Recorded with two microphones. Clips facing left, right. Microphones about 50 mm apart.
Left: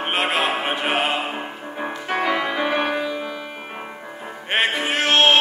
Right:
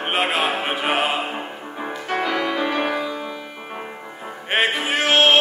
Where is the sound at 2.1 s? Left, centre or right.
Centre.